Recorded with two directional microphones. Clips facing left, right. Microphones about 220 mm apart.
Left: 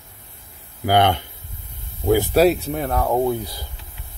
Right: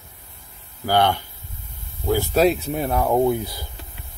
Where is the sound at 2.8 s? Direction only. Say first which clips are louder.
Right 5 dB; 10° right (ahead or behind).